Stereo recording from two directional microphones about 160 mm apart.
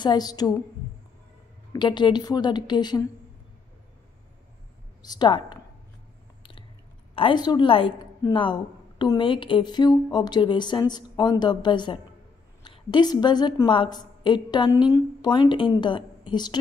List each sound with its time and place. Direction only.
0.0 s a woman's voice: 25° left (ahead or behind)
1.7 s a woman's voice: 30° left (ahead or behind)
5.0 s a woman's voice: 25° left (ahead or behind)
7.2 s a woman's voice: 30° left (ahead or behind)